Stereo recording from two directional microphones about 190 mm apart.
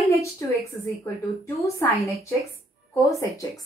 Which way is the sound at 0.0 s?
15° left (ahead or behind).